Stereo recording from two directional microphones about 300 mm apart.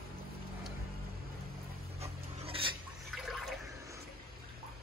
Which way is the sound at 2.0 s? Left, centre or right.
Centre.